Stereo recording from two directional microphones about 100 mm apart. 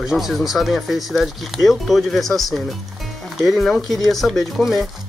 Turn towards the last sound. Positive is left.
turn(degrees=0)  # may be behind; listen again after turning